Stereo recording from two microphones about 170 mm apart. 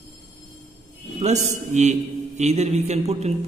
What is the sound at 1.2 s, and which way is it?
Music, 40° right (ahead or behind).